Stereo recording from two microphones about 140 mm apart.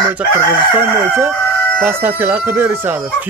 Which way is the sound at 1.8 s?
15° right (ahead or behind).